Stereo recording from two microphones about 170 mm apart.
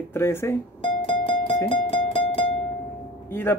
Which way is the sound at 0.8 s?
30° left (ahead or behind).